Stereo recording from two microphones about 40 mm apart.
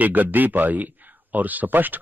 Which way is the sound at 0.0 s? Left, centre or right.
Right.